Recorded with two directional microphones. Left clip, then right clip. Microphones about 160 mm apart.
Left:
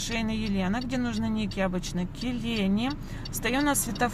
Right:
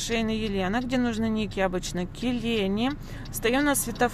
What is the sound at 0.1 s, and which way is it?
Speech, 20° right (ahead or behind).